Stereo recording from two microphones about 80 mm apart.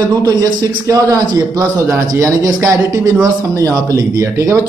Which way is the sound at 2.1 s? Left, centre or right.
Right.